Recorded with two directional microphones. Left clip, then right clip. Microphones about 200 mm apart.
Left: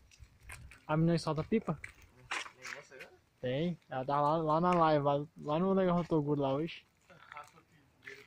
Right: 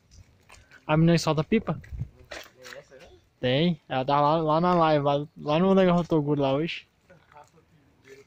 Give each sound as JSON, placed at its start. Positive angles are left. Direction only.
{"t": 0.8, "sound": "speech", "side_deg": -20}
{"t": 1.6, "sound": "a sound", "side_deg": -10}
{"t": 3.3, "sound": "speech", "side_deg": -30}